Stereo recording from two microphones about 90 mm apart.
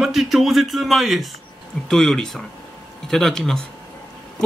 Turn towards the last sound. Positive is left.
turn(degrees=5)  # may be behind; listen again after turning